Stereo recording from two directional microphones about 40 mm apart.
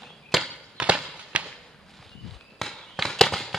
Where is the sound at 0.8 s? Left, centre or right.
Right.